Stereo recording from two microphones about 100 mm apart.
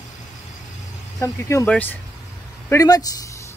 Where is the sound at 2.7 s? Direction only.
35° left (ahead or behind).